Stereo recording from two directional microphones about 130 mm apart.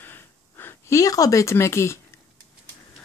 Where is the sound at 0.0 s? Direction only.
15° left (ahead or behind).